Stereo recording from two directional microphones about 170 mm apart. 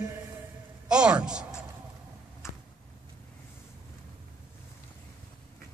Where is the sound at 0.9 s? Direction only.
5° right (ahead or behind).